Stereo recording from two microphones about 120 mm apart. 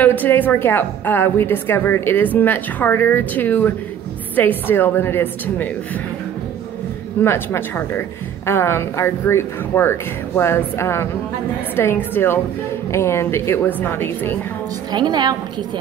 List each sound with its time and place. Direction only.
0.0 s a woman's voice: 15° left (ahead or behind)
7.2 s a woman's voice: 20° left (ahead or behind)
14.9 s a woman's voice: 35° right (ahead or behind)